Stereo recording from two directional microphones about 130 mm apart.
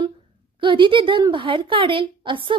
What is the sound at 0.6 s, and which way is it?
A woman's voice, 40° right (ahead or behind).